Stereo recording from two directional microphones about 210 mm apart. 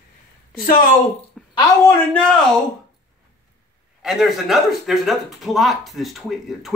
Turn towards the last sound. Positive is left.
turn(degrees=0)  # may be behind; listen again after turning